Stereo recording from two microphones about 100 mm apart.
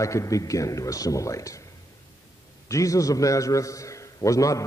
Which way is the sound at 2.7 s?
35° left (ahead or behind).